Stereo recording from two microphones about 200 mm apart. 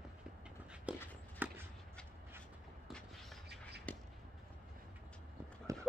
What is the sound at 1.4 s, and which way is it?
Walk, 10° right (ahead or behind).